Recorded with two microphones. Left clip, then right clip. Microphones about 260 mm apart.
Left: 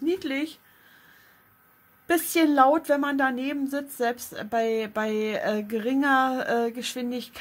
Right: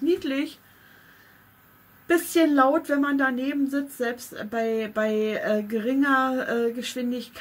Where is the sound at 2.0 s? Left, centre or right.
Left.